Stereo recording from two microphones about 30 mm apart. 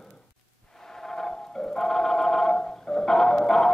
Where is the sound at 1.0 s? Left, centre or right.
Centre.